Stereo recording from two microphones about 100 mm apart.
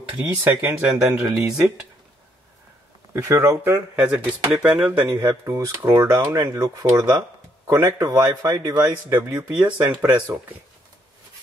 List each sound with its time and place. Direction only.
0.1 s speech: 20° right (ahead or behind)
3.1 s speech: 30° right (ahead or behind)
3.9 s speech: 15° right (ahead or behind)
5.2 s speech: 30° right (ahead or behind)
9.3 s speech: 15° right (ahead or behind)